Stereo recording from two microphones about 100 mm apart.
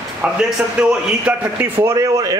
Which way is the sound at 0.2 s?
10° right (ahead or behind).